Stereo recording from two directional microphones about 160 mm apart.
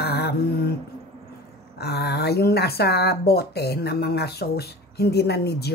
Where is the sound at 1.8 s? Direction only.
90° left.